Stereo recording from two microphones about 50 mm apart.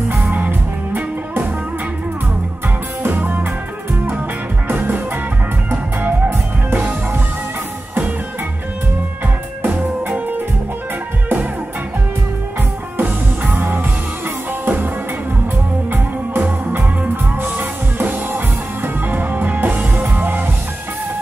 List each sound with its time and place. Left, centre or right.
0.1 s music: right
3.0 s music: right
4.6 s music: right
9.6 s music: right
12.9 s music: right
15.9 s music: right